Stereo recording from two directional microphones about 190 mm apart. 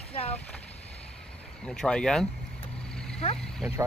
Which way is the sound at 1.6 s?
5° left (ahead or behind).